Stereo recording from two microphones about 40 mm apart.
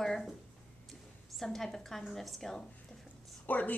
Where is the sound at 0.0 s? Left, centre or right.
Centre.